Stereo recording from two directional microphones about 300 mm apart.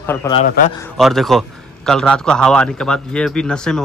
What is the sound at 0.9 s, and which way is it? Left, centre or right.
A man's voice, centre.